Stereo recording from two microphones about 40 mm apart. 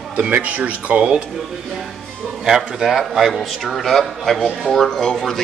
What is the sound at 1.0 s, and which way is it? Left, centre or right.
Speech, right.